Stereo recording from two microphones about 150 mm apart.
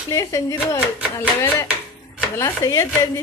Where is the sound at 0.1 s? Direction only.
20° left (ahead or behind).